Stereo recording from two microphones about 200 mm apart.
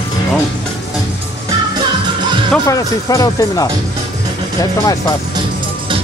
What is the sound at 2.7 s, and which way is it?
Speech, 15° left (ahead or behind).